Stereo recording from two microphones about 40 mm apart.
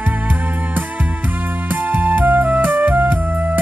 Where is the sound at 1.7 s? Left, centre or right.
Right.